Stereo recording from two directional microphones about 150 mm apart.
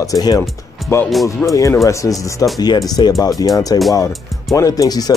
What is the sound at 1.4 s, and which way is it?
Speech, 20° left (ahead or behind).